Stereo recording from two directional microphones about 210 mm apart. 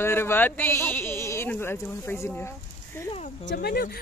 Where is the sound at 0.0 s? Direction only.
10° left (ahead or behind).